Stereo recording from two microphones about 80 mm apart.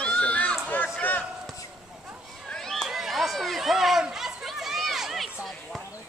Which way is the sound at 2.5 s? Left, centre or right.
Centre.